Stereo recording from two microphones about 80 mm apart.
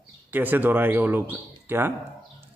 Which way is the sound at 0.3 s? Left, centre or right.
Right.